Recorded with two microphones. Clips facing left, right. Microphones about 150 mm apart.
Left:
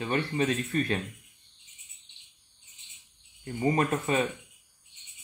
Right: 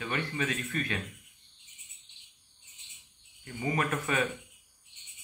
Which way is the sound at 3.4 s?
35° left (ahead or behind).